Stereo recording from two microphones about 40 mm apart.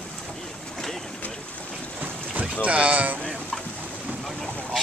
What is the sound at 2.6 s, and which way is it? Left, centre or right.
Speech, right.